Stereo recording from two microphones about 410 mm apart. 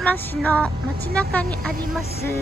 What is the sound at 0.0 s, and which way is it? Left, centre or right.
Music, centre.